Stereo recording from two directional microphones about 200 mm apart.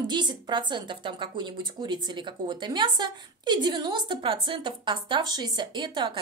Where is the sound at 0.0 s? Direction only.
20° right (ahead or behind).